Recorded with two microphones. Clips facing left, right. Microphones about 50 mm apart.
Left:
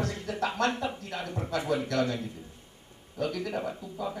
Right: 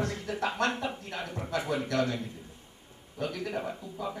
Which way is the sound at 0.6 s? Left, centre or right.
Right.